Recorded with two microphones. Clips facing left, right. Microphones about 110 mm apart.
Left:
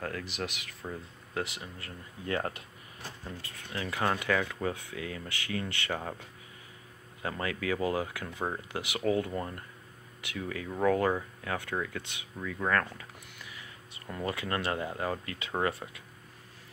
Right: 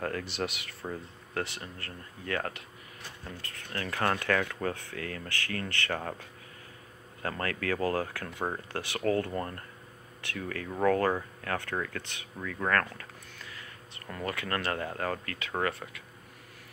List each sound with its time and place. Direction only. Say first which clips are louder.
0.0 s speech: right 3 dB; 5° left (ahead or behind)
0.9 s speech: even; 10° left (ahead or behind)
2.2 s speech: left 1 dB; 25° left (ahead or behind)
3.3 s speech: right 2 dB; 15° left (ahead or behind)
7.2 s speech: right 1 dB; 10° left (ahead or behind)